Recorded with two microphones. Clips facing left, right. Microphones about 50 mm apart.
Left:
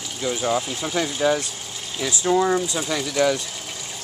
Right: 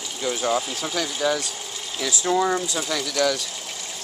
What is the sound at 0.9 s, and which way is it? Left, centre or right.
Speech, centre.